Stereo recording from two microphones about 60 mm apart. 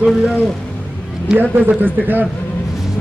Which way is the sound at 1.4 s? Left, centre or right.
Right.